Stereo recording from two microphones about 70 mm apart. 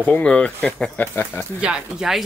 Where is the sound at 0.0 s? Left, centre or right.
Centre.